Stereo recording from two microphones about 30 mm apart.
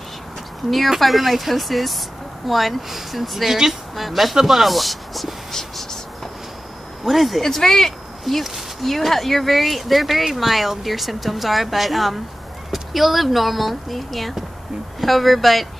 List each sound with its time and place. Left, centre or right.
0.8 s speech: centre
5.5 s a sound: centre
7.1 s speech: centre
7.4 s speech: centre